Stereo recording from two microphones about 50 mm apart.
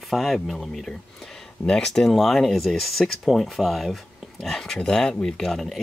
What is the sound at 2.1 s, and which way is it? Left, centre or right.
Speech, centre.